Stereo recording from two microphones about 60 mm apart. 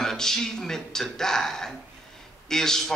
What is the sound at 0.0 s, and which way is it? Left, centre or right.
A man's voice, centre.